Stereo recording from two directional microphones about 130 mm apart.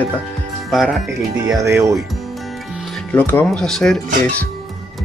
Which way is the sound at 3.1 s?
15° left (ahead or behind).